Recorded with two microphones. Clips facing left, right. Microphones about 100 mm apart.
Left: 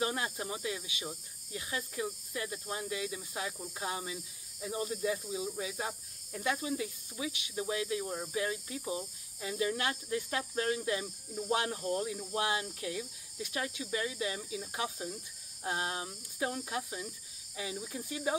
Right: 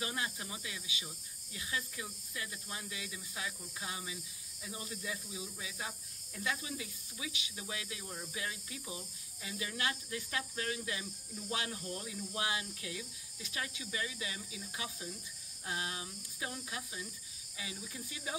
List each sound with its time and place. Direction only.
0.0 s speech: 40° left (ahead or behind)